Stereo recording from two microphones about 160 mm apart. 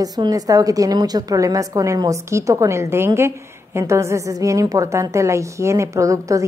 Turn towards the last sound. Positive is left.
turn(degrees=-20)  # may be behind; listen again after turning